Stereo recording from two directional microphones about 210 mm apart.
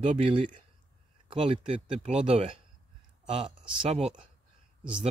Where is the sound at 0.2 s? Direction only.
25° right (ahead or behind).